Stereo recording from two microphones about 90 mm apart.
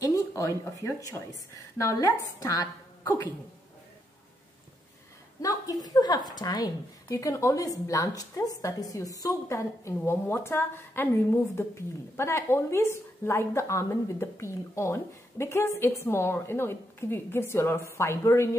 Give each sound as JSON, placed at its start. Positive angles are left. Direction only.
{"t": 0.0, "sound": "a woman's voice", "side_deg": 35}
{"t": 5.4, "sound": "a woman's voice", "side_deg": 40}
{"t": 7.1, "sound": "a woman's voice", "side_deg": 35}